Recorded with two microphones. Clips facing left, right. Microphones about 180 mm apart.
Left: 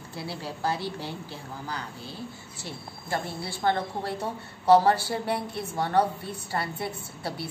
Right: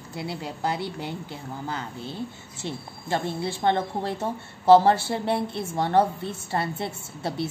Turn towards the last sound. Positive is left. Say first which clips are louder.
# right 4 dB
turn(degrees=-25)  # may be behind; listen again after turning